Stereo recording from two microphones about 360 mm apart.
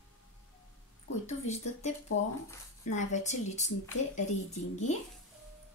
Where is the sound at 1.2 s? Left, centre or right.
Centre.